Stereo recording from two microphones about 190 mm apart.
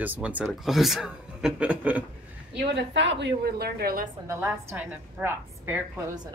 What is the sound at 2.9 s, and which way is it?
A woman's voice, 65° right (ahead or behind).